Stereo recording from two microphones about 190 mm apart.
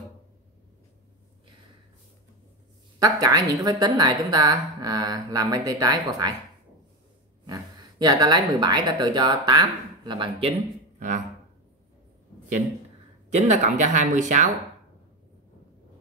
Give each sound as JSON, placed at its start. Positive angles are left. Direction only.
{"t": 3.0, "sound": "a woman's voice", "side_deg": -20}
{"t": 7.4, "sound": "speech", "side_deg": -20}
{"t": 13.3, "sound": "speech", "side_deg": -40}